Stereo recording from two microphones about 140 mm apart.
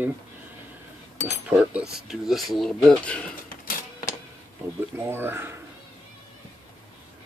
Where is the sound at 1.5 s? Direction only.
10° right (ahead or behind); by 3.4 s 5° left (ahead or behind).